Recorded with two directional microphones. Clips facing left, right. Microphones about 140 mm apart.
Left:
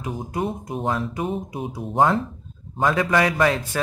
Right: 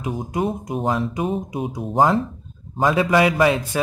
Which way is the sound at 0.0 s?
20° right (ahead or behind).